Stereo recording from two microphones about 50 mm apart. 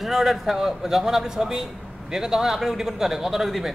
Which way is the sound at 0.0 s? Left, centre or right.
Centre.